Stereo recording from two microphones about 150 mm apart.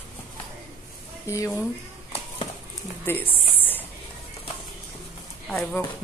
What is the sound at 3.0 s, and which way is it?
Speech, 15° left (ahead or behind).